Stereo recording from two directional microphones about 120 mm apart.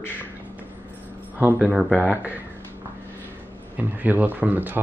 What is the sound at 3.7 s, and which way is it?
Speech, 15° right (ahead or behind).